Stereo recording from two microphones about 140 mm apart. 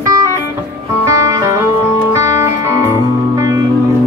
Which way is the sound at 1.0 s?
20° right (ahead or behind).